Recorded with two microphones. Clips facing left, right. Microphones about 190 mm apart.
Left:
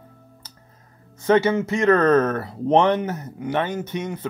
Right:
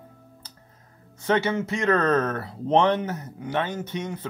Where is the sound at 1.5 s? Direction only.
25° left (ahead or behind).